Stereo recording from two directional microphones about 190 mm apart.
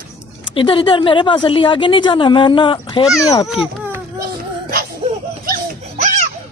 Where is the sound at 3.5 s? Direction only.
5° right (ahead or behind).